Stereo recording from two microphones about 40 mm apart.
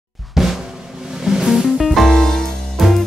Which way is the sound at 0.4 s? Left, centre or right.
Centre.